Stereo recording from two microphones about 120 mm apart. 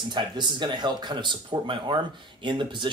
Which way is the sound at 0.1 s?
40° right (ahead or behind).